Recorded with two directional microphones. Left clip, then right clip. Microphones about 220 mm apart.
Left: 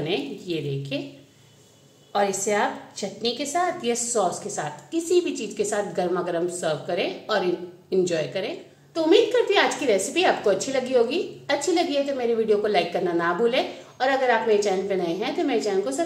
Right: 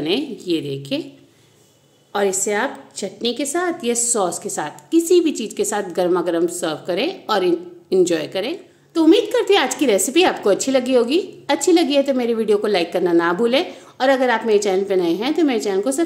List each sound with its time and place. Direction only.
0.0 s a woman's voice: 55° right (ahead or behind)
2.1 s a woman's voice: 50° right (ahead or behind)